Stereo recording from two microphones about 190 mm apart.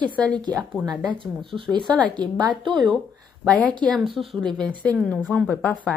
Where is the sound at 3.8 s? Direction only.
Centre (ahead or behind).